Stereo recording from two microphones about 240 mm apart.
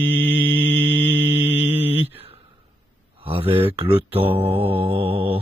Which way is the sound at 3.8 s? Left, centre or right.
Right.